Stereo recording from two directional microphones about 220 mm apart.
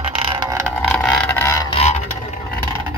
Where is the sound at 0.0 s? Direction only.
20° right (ahead or behind).